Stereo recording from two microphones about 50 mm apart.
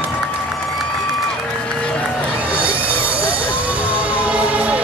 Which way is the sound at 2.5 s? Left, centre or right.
Right.